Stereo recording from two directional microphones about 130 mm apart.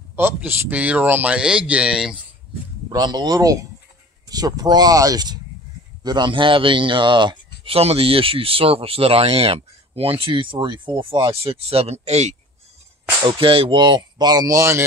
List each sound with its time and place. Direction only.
0.1 s speech: 15° right (ahead or behind)
2.9 s speech: 35° right (ahead or behind); by 12.4 s 55° right (ahead or behind)
13.3 s speech: 45° right (ahead or behind); by 14.8 s 25° right (ahead or behind)